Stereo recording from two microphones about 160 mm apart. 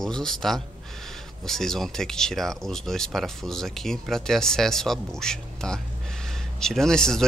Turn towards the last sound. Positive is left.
turn(degrees=5)  # may be behind; listen again after turning